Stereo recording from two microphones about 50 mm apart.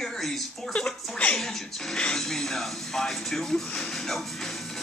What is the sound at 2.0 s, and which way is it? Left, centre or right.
Music, centre.